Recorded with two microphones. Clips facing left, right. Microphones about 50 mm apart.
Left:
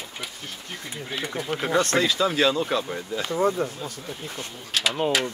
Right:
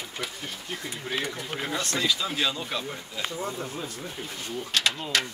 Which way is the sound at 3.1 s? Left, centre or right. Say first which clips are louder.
Left 10 dB; left.